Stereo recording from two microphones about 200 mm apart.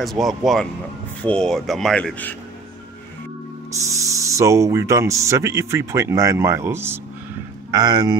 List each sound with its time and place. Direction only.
0.0 s speech: centre (ahead or behind)
3.9 s speech: 15° right (ahead or behind)